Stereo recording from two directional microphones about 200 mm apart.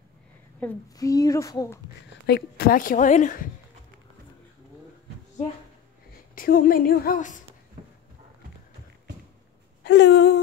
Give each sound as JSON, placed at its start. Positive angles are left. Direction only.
{"t": 0.6, "sound": "speech", "side_deg": 5}
{"t": 0.9, "sound": "speech", "side_deg": 20}
{"t": 2.2, "sound": "a woman's voice", "side_deg": 55}
{"t": 6.3, "sound": "a woman's voice", "side_deg": 45}
{"t": 9.8, "sound": "a sound", "side_deg": 60}